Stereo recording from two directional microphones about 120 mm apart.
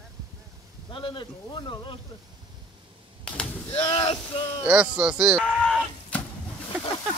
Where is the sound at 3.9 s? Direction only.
50° left (ahead or behind).